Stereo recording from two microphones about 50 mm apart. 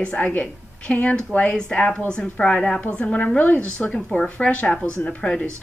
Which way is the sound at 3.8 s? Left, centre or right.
Centre.